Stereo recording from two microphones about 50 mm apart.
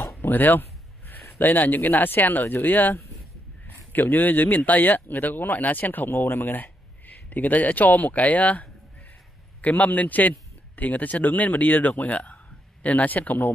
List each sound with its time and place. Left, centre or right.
0.2 s speech: left